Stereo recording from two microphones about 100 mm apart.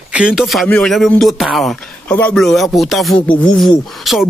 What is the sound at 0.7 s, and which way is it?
A man's voice, 10° left (ahead or behind).